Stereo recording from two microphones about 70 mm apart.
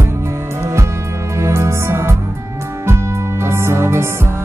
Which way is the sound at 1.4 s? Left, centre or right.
Right.